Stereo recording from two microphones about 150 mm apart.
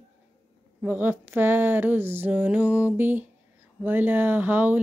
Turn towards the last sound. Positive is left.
turn(degrees=-10)  # may be behind; listen again after turning